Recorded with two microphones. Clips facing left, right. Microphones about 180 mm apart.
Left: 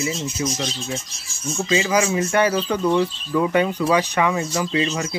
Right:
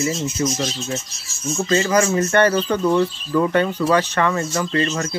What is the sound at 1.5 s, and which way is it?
Speech, centre (ahead or behind).